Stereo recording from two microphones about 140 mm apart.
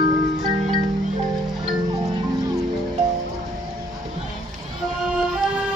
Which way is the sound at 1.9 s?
30° right (ahead or behind).